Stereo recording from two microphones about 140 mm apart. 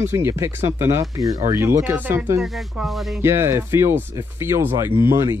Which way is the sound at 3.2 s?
20° right (ahead or behind).